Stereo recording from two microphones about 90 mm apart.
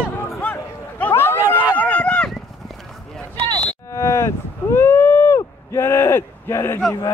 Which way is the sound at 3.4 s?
60° right (ahead or behind).